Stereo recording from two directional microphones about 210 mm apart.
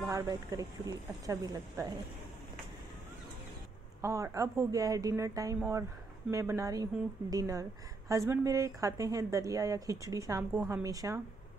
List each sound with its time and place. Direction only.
0.0 s speech: 15° right (ahead or behind)
4.0 s speech: 15° right (ahead or behind)
10.5 s a woman's voice: 5° right (ahead or behind)
10.8 s speech: 15° right (ahead or behind)